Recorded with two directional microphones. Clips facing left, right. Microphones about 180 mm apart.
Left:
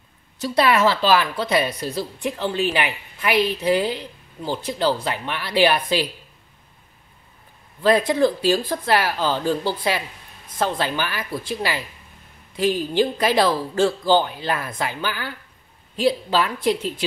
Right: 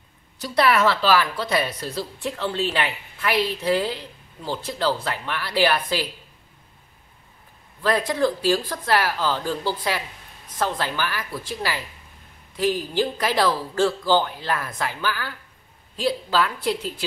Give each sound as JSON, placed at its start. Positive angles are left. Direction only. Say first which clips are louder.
{"t": 0.6, "sound": "a woman's voice", "louder": "left 1 dB", "side_deg": 20}
{"t": 7.8, "sound": "speech", "louder": "left 4 dB", "side_deg": 20}